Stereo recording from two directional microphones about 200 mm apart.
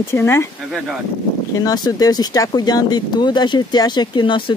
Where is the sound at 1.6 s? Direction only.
15° left (ahead or behind).